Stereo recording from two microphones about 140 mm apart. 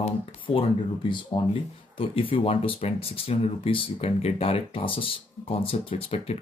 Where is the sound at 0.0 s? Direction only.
40° left (ahead or behind).